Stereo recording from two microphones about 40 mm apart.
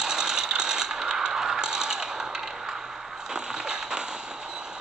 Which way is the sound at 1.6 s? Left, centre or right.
Centre.